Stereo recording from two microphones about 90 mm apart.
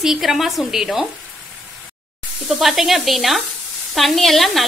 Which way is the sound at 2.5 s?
Centre (ahead or behind).